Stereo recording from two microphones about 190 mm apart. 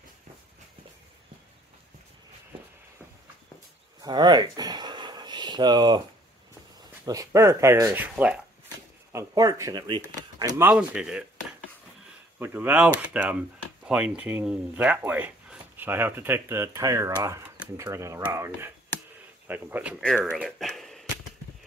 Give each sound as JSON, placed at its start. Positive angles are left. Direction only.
{"t": 4.0, "sound": "a sound", "side_deg": -20}
{"t": 7.1, "sound": "speech", "side_deg": -15}
{"t": 9.1, "sound": "speech", "side_deg": -20}
{"t": 10.6, "sound": "speech", "side_deg": -5}
{"t": 12.4, "sound": "speech", "side_deg": -10}
{"t": 20.0, "sound": "speech", "side_deg": 10}
{"t": 20.3, "sound": "a sound", "side_deg": 0}